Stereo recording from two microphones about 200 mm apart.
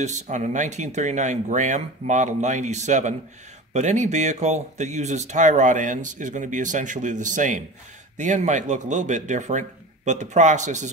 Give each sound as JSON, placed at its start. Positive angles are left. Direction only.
{"t": 0.0, "sound": "speech", "side_deg": -35}